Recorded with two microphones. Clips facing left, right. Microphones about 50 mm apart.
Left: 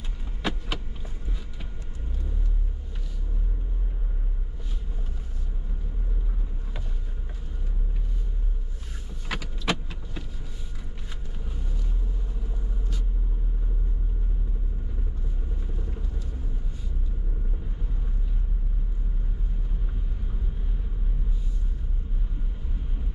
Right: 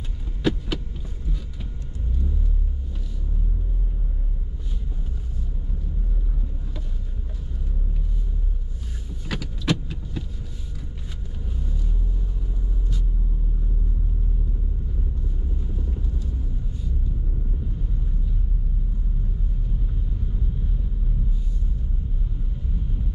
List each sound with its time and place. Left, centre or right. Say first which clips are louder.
0.4 s heart sounds: right 6 dB; centre
9.3 s vehicle: right 3 dB; centre